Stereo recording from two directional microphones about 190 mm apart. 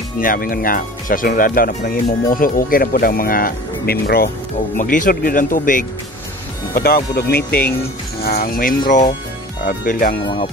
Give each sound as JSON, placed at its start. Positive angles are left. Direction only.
{"t": 0.2, "sound": "speech", "side_deg": 45}
{"t": 10.2, "sound": "speech", "side_deg": 25}